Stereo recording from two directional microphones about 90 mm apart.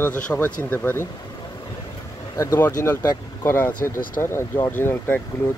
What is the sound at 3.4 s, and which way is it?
Speech, 30° left (ahead or behind).